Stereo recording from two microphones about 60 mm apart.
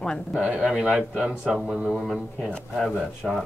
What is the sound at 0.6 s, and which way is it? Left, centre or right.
Speech, centre.